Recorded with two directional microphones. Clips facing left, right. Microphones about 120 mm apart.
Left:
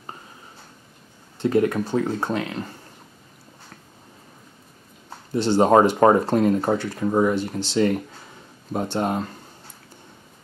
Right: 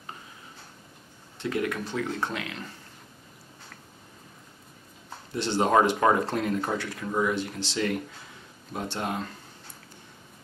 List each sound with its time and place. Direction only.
1.4 s speech: 35° left (ahead or behind)
5.3 s speech: 35° left (ahead or behind)